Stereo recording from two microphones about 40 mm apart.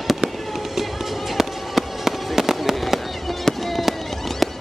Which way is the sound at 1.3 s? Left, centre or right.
Centre.